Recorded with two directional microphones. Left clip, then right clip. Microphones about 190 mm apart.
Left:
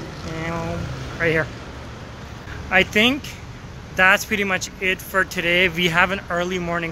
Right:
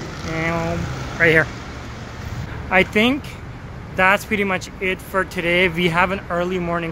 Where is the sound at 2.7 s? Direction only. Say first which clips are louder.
Even; 5° right (ahead or behind).